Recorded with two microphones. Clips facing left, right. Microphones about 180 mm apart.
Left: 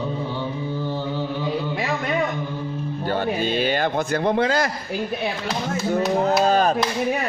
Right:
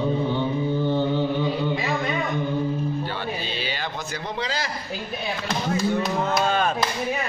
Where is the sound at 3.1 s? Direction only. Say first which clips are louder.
Left 8 dB; 50° left (ahead or behind).